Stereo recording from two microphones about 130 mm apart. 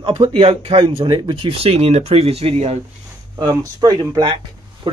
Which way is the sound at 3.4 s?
30° right (ahead or behind).